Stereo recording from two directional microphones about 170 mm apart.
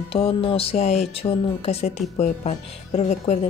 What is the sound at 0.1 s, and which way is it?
Speech, 35° left (ahead or behind).